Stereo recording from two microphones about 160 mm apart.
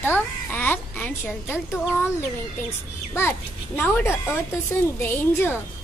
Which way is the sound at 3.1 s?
15° left (ahead or behind).